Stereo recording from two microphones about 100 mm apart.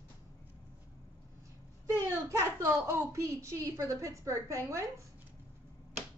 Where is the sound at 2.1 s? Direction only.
30° right (ahead or behind).